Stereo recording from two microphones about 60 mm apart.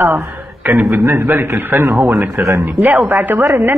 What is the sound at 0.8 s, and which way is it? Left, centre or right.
Speech, right.